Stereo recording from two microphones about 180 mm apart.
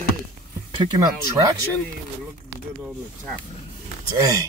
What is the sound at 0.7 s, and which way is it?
Speech, 20° right (ahead or behind).